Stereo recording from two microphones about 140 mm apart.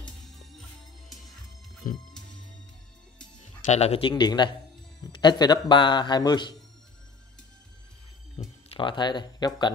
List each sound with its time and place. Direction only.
0.2 s music: centre (ahead or behind)
1.8 s speech: 80° left
3.6 s a man's voice: 50° left (ahead or behind)
4.1 s a man's voice: 30° left (ahead or behind)
8.6 s speech: 35° left (ahead or behind)